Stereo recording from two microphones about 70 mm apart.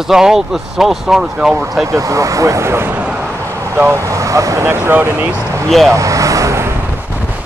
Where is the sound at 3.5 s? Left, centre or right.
Right.